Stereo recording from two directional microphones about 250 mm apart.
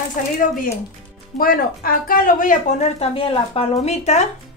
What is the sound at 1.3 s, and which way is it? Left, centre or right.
Speech, left.